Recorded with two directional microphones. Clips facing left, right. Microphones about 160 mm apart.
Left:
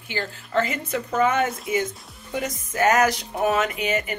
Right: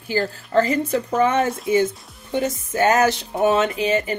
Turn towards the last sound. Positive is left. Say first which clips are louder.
# right 4 dB
turn(degrees=-30)  # may be behind; listen again after turning